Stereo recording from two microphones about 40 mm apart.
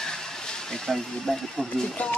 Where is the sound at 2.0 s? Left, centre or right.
Left.